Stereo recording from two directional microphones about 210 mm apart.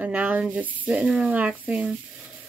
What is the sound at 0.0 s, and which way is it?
Speech, 5° right (ahead or behind).